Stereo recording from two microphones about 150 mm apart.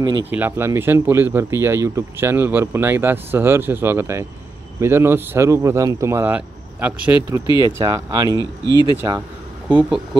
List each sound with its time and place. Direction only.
0.3 s speech: 15° right (ahead or behind)